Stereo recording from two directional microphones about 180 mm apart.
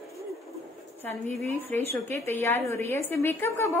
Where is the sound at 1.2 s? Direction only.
40° right (ahead or behind).